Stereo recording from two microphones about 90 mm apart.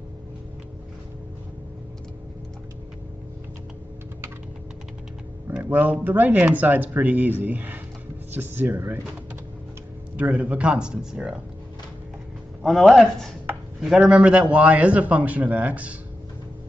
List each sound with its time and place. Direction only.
5.5 s speech: 20° right (ahead or behind)
10.1 s a man's voice: 15° right (ahead or behind)
12.6 s speech: centre (ahead or behind)
13.7 s a man's voice: 10° right (ahead or behind)